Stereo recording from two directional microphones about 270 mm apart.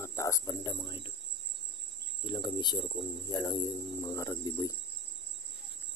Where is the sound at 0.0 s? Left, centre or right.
Centre.